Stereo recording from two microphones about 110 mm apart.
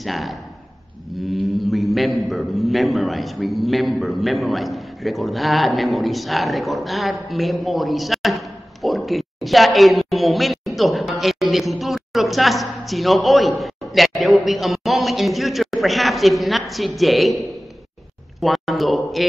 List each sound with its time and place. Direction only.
0.0 s speech: centre (ahead or behind)
18.4 s speech: centre (ahead or behind)